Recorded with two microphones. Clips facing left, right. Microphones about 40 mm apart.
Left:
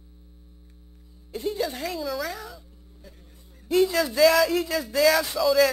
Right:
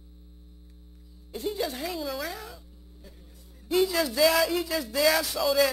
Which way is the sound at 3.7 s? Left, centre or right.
Centre.